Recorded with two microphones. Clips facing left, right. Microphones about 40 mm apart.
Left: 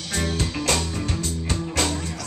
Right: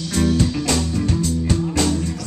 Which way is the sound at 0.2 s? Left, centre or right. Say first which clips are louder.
Right 8 dB; left.